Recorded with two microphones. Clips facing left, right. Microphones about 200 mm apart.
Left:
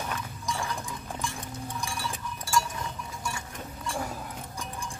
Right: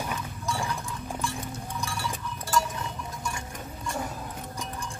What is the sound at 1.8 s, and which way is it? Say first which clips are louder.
Cowbell: right 3 dB; 15° left (ahead or behind).